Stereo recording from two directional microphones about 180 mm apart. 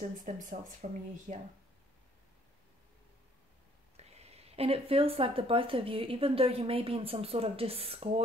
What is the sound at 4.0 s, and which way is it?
Speech, 35° right (ahead or behind).